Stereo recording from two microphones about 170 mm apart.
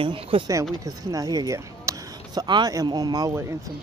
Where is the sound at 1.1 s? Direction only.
20° right (ahead or behind).